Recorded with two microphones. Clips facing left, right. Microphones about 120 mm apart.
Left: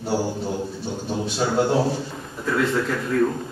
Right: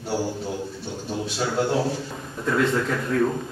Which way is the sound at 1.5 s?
30° left (ahead or behind).